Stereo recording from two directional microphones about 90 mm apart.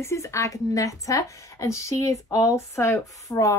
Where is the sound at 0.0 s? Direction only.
35° left (ahead or behind).